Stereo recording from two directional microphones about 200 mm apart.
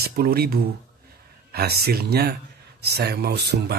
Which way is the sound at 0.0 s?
50° right (ahead or behind).